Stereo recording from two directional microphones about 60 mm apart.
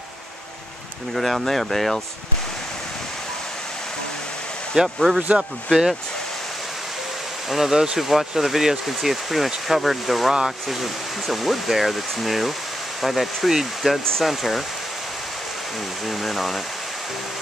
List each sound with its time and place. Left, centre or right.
1.1 s speech: centre
4.7 s speech: centre
7.5 s speech: centre
16.3 s speech: centre